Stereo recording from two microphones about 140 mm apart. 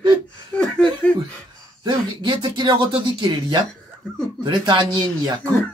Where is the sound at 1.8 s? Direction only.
35° right (ahead or behind).